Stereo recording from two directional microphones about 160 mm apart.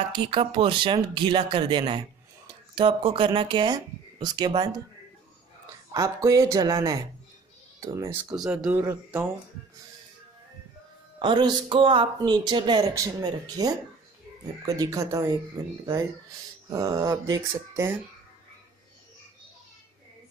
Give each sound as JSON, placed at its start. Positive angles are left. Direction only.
{"t": 0.1, "sound": "speech", "side_deg": -30}
{"t": 5.9, "sound": "speech", "side_deg": -20}
{"t": 8.3, "sound": "speech", "side_deg": -5}
{"t": 11.1, "sound": "speech", "side_deg": -30}